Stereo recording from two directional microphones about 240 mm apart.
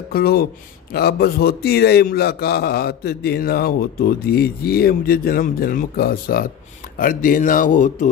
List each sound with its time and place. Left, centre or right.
0.1 s a man's voice: left